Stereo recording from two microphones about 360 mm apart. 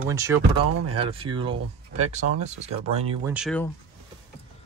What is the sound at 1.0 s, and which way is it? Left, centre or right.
Speech, centre.